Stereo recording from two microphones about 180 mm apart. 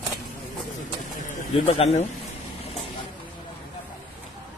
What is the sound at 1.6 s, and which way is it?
Speech, 40° left (ahead or behind).